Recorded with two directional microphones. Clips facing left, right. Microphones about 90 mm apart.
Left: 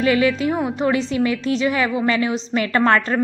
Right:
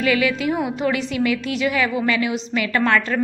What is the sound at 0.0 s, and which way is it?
A woman's voice, 30° left (ahead or behind).